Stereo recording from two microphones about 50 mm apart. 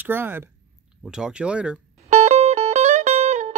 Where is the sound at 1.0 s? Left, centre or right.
Centre.